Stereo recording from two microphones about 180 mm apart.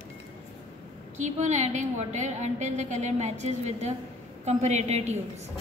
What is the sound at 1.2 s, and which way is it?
A woman's voice, 40° right (ahead or behind).